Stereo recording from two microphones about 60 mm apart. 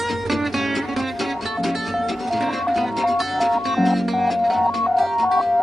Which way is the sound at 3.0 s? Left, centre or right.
Centre.